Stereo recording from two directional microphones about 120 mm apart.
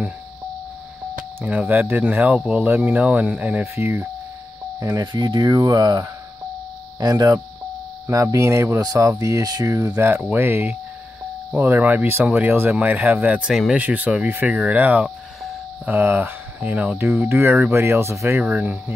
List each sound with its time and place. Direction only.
1.4 s speech: 15° right (ahead or behind)
5.0 s speech: 40° right (ahead or behind); by 15.9 s 5° right (ahead or behind)
15.9 s speech: 20° right (ahead or behind)